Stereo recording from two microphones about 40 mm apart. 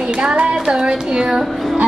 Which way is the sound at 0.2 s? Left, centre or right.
Right.